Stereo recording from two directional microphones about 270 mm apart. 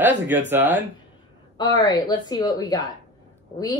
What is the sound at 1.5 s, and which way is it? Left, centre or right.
A woman's voice, centre.